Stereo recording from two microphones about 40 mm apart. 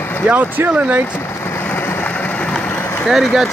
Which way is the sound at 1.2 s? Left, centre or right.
Left.